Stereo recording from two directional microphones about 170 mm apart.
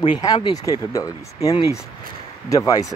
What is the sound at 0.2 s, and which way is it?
Speech, 25° left (ahead or behind).